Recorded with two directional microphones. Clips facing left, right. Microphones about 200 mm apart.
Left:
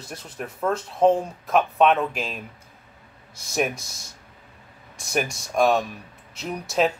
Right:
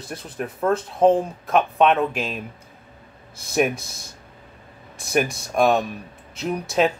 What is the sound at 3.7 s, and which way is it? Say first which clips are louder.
Speech: right 5 dB; 55° right (ahead or behind).